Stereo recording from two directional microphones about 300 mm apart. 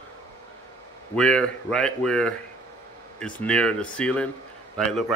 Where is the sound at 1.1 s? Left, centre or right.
Centre.